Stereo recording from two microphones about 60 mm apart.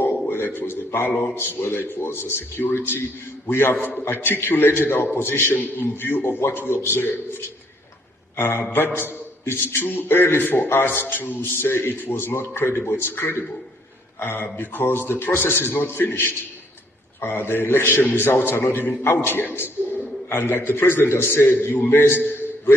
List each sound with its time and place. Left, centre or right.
0.3 s a sound: left
1.3 s a man's voice: left
3.7 s a man's voice: left
4.0 s a man's voice: left